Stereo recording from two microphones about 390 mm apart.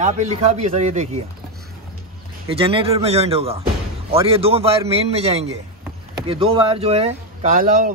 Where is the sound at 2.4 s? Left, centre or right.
Centre.